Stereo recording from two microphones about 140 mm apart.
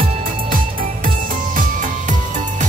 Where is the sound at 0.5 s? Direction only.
90° right.